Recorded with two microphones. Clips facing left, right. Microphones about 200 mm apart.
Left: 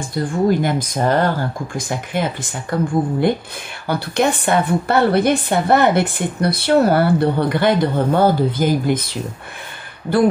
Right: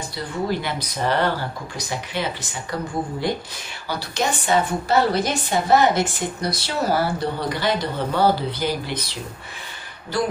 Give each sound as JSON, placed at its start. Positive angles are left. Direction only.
{"t": 0.1, "sound": "a woman's voice", "side_deg": 50}